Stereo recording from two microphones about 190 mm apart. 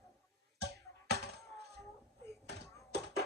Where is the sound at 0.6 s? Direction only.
60° right (ahead or behind).